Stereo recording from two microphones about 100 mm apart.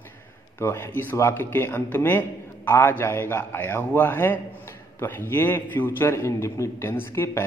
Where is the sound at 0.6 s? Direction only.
25° left (ahead or behind).